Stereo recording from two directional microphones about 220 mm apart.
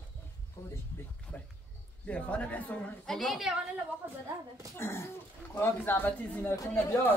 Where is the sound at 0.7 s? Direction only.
10° left (ahead or behind).